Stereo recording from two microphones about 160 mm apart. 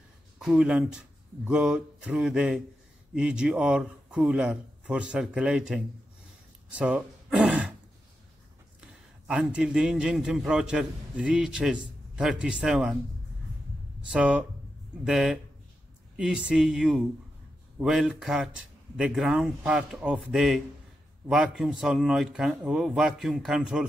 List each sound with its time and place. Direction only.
0.4 s a man's voice: 5° right (ahead or behind)
9.3 s a man's voice: 5° right (ahead or behind)
14.1 s a man's voice: 5° right (ahead or behind)